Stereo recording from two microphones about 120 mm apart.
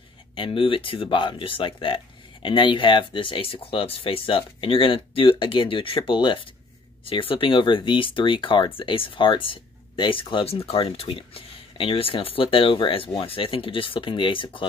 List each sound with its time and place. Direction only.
0.4 s speech: 45° left (ahead or behind)